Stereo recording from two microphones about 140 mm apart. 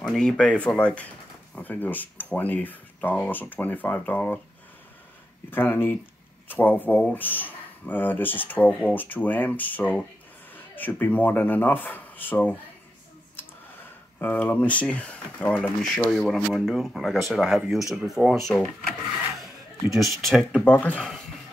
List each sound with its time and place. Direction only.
0.0 s speech: 5° left (ahead or behind)
5.5 s speech: 15° left (ahead or behind)
14.2 s speech: 10° left (ahead or behind)
16.3 s speech: 10° right (ahead or behind)
20.6 s speech: 10° left (ahead or behind)